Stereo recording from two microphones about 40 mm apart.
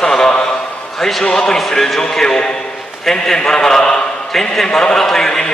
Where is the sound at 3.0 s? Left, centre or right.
Centre.